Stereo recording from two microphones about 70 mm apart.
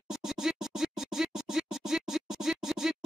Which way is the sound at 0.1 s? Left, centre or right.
Centre.